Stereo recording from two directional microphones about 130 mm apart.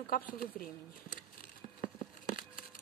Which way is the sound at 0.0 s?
90° left.